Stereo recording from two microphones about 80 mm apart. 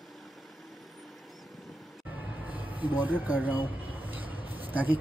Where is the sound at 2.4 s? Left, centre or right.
Right.